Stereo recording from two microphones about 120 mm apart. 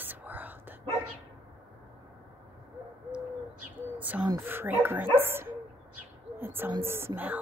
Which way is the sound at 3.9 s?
15° right (ahead or behind).